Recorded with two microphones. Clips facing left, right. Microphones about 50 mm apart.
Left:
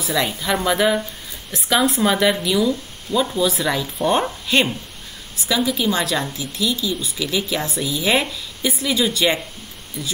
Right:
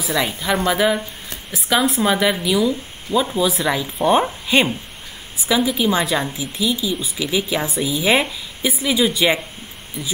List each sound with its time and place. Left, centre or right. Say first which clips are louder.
0.0 s speech: even; centre